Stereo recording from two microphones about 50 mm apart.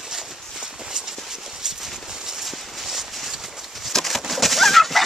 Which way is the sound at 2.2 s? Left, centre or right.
Centre.